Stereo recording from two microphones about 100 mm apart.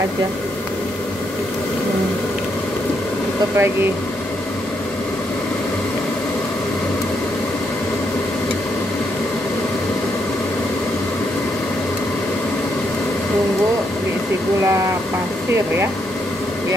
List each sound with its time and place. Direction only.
3.5 s speech: 25° right (ahead or behind)